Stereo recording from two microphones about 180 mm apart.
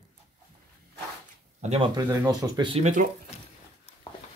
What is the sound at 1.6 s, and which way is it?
Speech, 35° right (ahead or behind).